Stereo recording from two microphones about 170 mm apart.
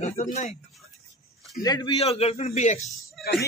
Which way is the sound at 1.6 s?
25° left (ahead or behind).